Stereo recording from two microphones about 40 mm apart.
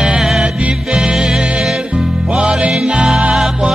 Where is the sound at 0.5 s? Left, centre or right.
Right.